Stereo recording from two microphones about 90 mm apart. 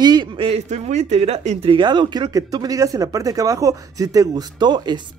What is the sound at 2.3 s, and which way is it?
Speech, 40° right (ahead or behind).